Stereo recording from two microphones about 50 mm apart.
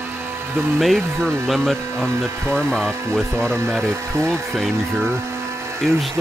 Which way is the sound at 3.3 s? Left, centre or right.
Right.